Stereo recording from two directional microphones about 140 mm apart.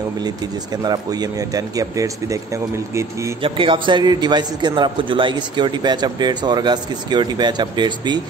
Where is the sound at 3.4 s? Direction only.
35° right (ahead or behind).